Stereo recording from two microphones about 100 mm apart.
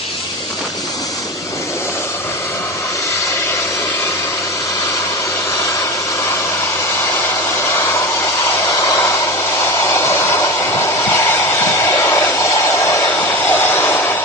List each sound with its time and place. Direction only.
8.8 s hair dryer: 35° left (ahead or behind)
9.8 s a sound: 30° left (ahead or behind)
11.2 s hair dryer: 25° left (ahead or behind)
13.5 s vehicle: 25° left (ahead or behind)